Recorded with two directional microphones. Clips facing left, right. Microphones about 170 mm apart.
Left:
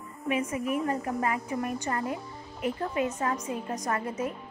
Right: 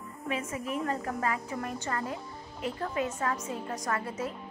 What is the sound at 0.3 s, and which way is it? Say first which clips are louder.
A woman's voice: left 5 dB; 15° left (ahead or behind).